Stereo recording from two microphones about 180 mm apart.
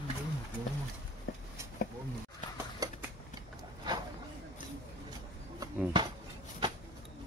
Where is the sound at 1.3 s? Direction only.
55° left (ahead or behind).